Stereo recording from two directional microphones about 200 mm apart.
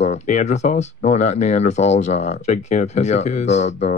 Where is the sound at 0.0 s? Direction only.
35° left (ahead or behind).